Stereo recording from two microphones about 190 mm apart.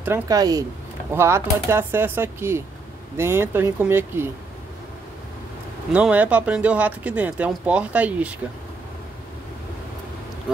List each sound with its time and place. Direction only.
0.0 s speech: 15° right (ahead or behind)
5.9 s speech: 5° right (ahead or behind)